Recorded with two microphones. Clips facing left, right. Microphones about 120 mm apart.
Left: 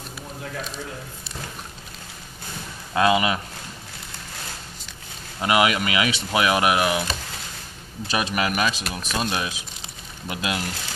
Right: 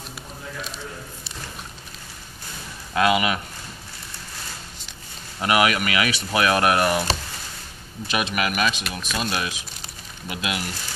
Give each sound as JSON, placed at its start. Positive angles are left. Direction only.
{"t": 2.9, "sound": "speech", "side_deg": 25}
{"t": 5.4, "sound": "speech", "side_deg": 20}
{"t": 8.1, "sound": "speech", "side_deg": 30}
{"t": 8.9, "sound": "speech", "side_deg": 20}
{"t": 10.2, "sound": "speech", "side_deg": 35}